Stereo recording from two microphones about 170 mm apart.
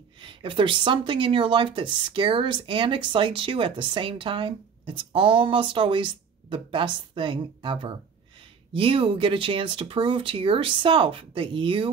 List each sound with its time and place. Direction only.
0.2 s speech: 30° right (ahead or behind)